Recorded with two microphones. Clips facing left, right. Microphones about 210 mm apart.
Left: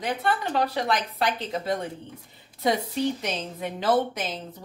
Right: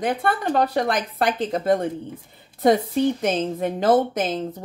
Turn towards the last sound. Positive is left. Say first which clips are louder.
# right 5 dB
turn(degrees=-50)  # may be behind; listen again after turning